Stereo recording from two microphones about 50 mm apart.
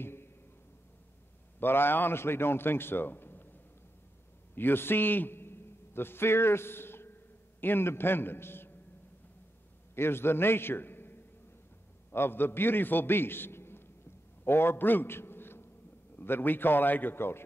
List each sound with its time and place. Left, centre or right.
0.0 s a sound: left
1.6 s a man's voice: left
4.6 s a man's voice: left
9.9 s a man's voice: left
14.4 s a sound: left
16.2 s a man's voice: left